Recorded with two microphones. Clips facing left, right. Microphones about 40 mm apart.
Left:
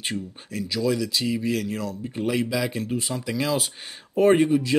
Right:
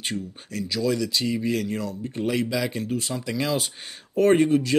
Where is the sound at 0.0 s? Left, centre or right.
Centre.